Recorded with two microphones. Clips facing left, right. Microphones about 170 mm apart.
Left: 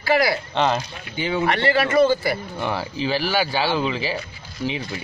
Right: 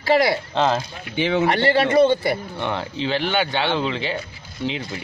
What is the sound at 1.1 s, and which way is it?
Speech, 75° right (ahead or behind).